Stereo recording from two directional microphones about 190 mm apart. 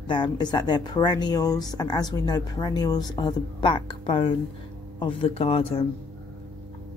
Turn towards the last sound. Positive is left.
turn(degrees=30)  # may be behind; listen again after turning